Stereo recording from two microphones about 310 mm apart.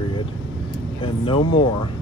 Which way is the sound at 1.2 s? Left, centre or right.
Centre.